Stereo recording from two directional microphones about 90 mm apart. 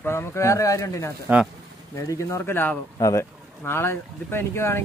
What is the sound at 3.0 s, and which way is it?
Speech, 35° left (ahead or behind).